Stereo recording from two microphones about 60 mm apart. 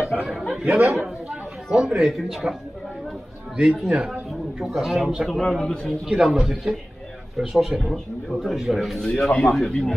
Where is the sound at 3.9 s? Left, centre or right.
Centre.